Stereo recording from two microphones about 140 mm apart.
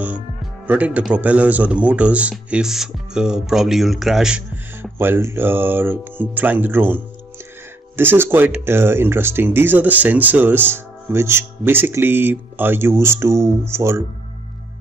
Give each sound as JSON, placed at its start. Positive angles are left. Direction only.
{"t": 0.7, "sound": "speech", "side_deg": -10}
{"t": 4.9, "sound": "speech", "side_deg": -15}